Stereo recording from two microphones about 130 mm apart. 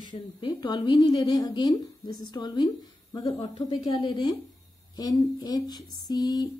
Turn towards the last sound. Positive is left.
turn(degrees=30)  # may be behind; listen again after turning